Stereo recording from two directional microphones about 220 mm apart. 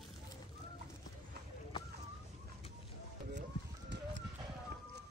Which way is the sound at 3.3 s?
50° right (ahead or behind).